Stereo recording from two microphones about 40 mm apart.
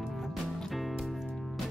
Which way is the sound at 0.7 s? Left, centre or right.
Centre.